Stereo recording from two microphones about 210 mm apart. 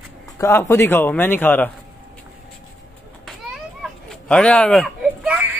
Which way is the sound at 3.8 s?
5° left (ahead or behind).